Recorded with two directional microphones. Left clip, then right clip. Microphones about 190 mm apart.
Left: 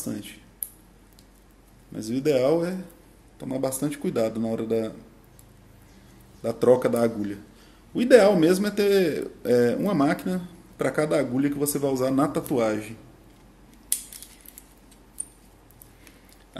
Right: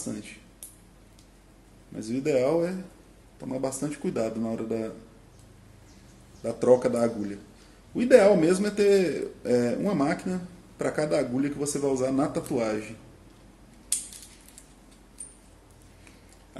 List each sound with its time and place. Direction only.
0.0 s speech: 40° left (ahead or behind)
2.0 s speech: 40° left (ahead or behind)
6.4 s speech: 35° left (ahead or behind)